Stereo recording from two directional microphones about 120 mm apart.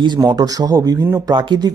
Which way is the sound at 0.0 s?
40° right (ahead or behind).